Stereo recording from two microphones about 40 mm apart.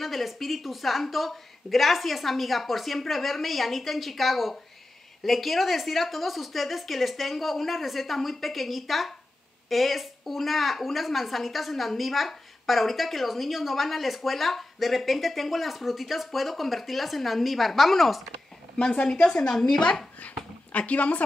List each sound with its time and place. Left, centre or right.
0.0 s a woman's voice: centre
18.8 s a woman's voice: left
20.7 s a woman's voice: left